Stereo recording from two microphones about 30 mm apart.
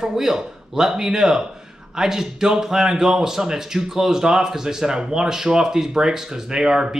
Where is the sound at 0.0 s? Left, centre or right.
Centre.